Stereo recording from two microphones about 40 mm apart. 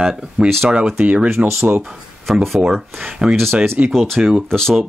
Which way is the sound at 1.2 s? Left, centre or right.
Right.